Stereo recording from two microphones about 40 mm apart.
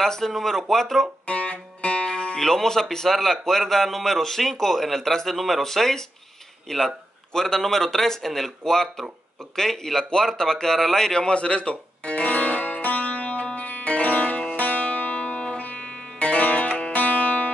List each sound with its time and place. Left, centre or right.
0.0 s a man's voice: centre
1.2 s music: left
2.0 s music: centre
2.4 s a man's voice: centre
11.1 s music: left
16.9 s music: left